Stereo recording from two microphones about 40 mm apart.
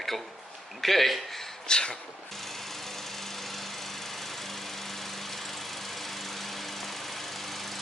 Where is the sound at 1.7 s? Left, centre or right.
Left.